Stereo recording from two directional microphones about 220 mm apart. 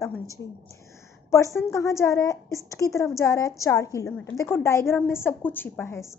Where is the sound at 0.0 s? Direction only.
15° left (ahead or behind).